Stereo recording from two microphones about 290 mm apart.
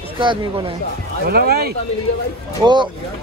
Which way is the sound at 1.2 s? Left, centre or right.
Right.